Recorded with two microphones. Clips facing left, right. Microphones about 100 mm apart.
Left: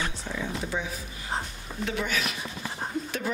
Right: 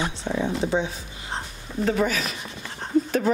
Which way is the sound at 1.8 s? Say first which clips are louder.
Right 6 dB; 40° right (ahead or behind).